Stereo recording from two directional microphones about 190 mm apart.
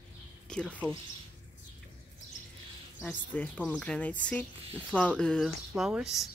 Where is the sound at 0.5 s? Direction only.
5° left (ahead or behind).